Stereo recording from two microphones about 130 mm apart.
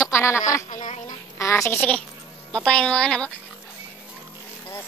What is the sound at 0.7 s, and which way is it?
Speech, 70° left (ahead or behind).